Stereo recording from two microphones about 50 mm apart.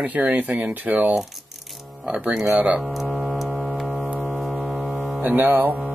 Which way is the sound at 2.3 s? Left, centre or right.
Centre.